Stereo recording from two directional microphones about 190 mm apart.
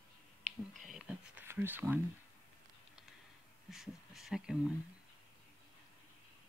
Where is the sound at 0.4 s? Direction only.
35° right (ahead or behind).